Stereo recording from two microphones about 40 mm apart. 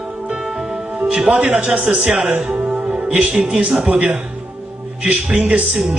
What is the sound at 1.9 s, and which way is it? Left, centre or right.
Speech, right.